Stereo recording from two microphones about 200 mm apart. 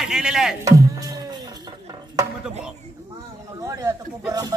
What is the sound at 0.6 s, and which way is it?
Music, 15° right (ahead or behind).